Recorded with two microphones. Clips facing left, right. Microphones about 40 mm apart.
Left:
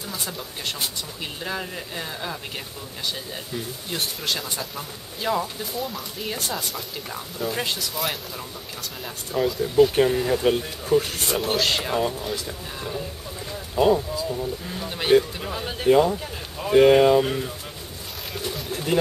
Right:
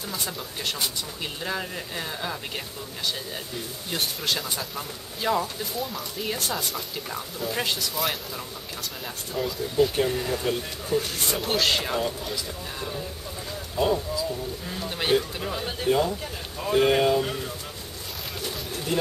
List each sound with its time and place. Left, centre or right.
0.1 s speech: centre
3.9 s speech: centre
9.5 s speech: centre
10.0 s speech: centre
11.2 s speech: centre
12.0 s speech: centre
13.7 s speech: centre
14.7 s speech: centre
15.8 s speech: centre
18.3 s pigeon: centre